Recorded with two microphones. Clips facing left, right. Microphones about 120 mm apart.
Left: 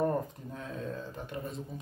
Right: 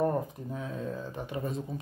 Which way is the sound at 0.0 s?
5° right (ahead or behind).